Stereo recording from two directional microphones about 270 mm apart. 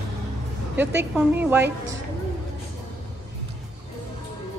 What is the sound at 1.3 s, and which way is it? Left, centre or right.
Speech, centre.